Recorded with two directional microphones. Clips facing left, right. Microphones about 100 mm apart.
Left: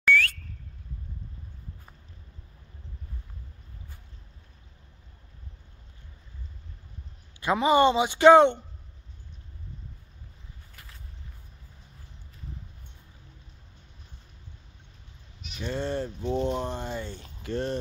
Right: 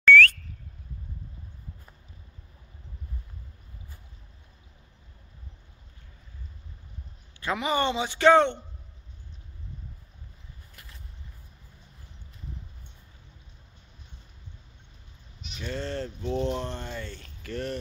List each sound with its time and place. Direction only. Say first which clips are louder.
0.0 s a sound: right 6 dB; 15° left (ahead or behind)
7.5 s speech: left 6 dB; 20° left (ahead or behind)
15.6 s speech: left 3 dB; 15° left (ahead or behind)